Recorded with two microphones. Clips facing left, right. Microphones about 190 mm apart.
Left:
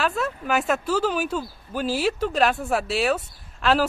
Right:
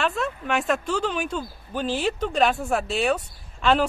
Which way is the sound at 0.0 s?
Centre (ahead or behind).